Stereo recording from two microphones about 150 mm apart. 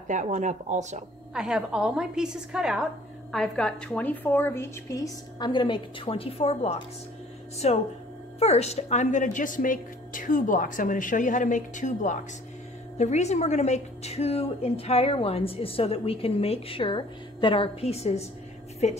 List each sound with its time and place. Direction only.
0.1 s speech: 55° right (ahead or behind)
1.3 s a woman's voice: 5° right (ahead or behind); by 18.2 s 45° left (ahead or behind)